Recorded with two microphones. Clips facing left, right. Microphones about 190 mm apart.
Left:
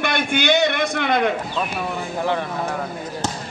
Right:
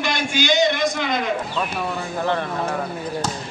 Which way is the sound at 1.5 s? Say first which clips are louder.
Even; 10° left (ahead or behind).